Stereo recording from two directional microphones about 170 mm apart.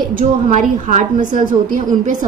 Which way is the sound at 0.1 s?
50° right (ahead or behind).